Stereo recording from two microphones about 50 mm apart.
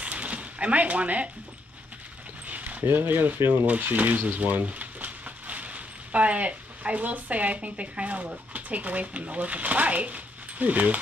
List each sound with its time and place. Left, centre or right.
0.0 s a sound: right
2.4 s dog: right
2.9 s speech: right
3.3 s speech: right
3.6 s speech: right